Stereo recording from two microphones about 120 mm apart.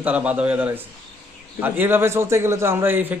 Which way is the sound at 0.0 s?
10° right (ahead or behind).